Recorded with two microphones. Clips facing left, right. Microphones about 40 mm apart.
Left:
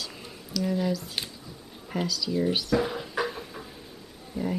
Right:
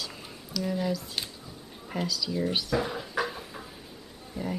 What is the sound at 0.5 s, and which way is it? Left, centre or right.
Speech, centre.